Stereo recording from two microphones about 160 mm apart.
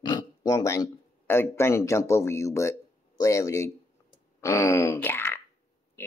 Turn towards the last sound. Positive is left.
turn(degrees=15)  # may be behind; listen again after turning